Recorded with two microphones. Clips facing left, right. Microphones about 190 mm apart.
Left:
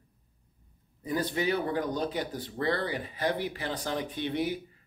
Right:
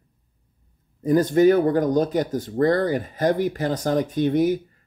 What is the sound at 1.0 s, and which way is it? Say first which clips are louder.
Speech: right 13 dB; 45° right (ahead or behind).